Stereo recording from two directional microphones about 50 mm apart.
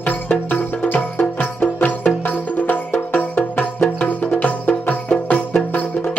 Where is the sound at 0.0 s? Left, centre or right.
Left.